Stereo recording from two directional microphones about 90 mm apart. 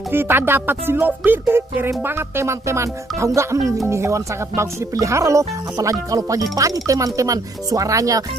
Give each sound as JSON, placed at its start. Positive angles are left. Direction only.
{"t": 0.1, "sound": "speech", "side_deg": -25}